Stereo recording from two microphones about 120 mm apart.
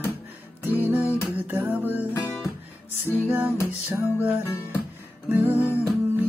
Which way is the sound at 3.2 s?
20° right (ahead or behind).